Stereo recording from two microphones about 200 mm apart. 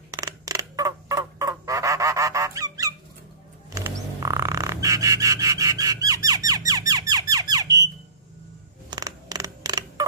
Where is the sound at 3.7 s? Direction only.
15° right (ahead or behind).